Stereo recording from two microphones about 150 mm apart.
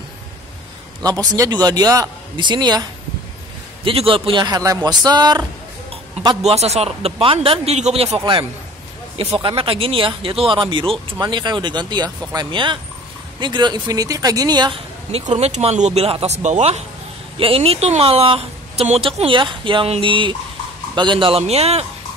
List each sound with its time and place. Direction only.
1.0 s speech: 25° right (ahead or behind)
6.4 s a man's voice: 45° right (ahead or behind); by 14.8 s 30° right (ahead or behind)
15.0 s a man's voice: 45° right (ahead or behind)